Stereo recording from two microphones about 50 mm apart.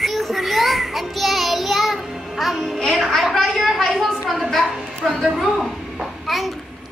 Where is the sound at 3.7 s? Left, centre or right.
Centre.